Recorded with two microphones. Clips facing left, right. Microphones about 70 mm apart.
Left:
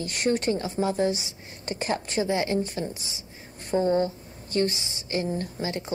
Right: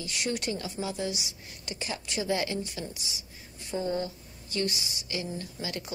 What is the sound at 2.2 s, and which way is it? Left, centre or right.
A woman's voice, left.